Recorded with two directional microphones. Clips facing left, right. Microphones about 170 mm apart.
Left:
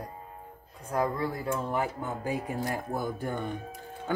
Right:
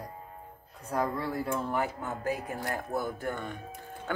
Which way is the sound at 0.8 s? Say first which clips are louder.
Left 2 dB; 10° left (ahead or behind).